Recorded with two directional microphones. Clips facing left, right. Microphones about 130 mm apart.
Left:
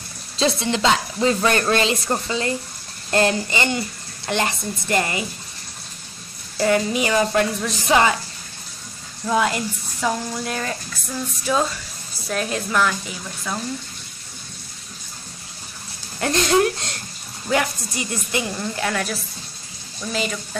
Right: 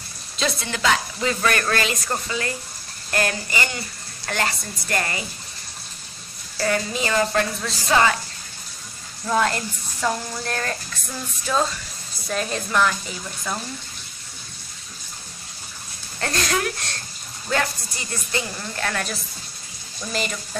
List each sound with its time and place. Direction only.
0.4 s speech: 25° left (ahead or behind)
6.6 s a woman's voice: 20° left (ahead or behind)
9.2 s a woman's voice: 5° left (ahead or behind)
16.2 s a woman's voice: 20° left (ahead or behind); by 20.3 s centre (ahead or behind)